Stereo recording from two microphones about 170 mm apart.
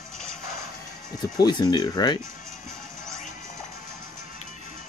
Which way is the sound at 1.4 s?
25° left (ahead or behind).